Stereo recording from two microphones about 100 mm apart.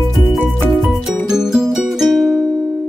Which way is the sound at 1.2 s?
5° right (ahead or behind).